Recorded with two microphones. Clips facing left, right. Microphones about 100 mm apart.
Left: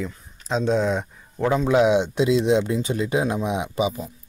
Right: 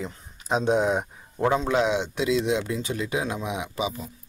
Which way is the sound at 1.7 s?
15° left (ahead or behind).